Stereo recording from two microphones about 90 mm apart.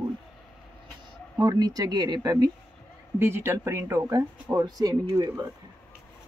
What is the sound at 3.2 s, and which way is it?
Speech, 25° right (ahead or behind).